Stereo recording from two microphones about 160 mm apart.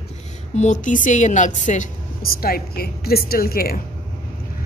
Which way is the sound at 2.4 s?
70° left (ahead or behind).